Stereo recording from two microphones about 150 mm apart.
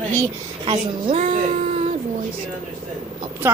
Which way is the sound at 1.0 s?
45° right (ahead or behind).